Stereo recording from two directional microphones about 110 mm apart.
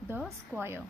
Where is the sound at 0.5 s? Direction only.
20° right (ahead or behind).